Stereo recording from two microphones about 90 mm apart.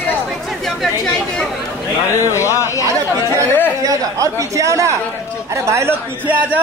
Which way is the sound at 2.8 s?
35° right (ahead or behind).